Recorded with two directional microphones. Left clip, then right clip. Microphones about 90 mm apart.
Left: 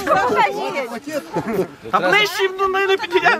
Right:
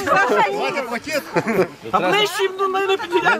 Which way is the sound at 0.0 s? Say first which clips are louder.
Even; centre (ahead or behind).